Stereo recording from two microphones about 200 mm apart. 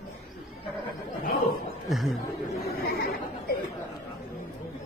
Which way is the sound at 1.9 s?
Centre (ahead or behind).